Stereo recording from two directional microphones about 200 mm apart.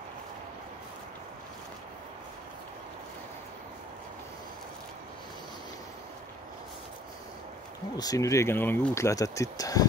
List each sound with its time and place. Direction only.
8.0 s speech: 15° left (ahead or behind)